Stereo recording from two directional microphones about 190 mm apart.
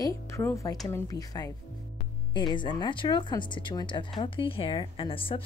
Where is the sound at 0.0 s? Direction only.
15° left (ahead or behind).